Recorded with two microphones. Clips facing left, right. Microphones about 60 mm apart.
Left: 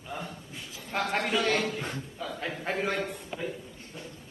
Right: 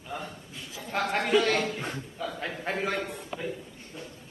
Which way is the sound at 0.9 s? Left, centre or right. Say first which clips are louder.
Right 3 dB; centre.